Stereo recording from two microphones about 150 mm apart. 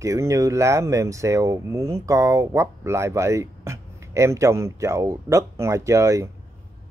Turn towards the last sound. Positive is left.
turn(degrees=-20)  # may be behind; listen again after turning